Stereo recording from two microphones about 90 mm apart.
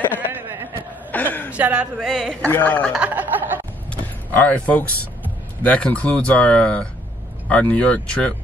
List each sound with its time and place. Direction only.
0.3 s a sound: 25° right (ahead or behind)
1.1 s chuckle: 20° left (ahead or behind)
1.5 s a man's voice: 15° right (ahead or behind)
2.0 s speech: centre (ahead or behind)
2.4 s speech: 20° left (ahead or behind)
3.0 s a sound: 20° right (ahead or behind)
3.9 s vehicle: 20° left (ahead or behind)
5.6 s speech: 15° left (ahead or behind)